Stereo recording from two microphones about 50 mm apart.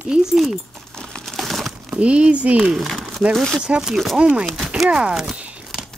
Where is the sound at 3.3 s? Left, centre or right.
Centre.